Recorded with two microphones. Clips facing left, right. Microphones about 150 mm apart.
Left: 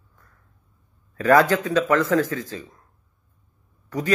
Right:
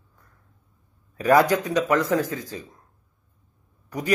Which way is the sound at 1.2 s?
15° right (ahead or behind).